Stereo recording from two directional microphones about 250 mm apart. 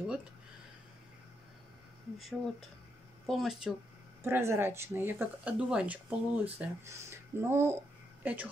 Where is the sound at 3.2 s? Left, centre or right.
Centre.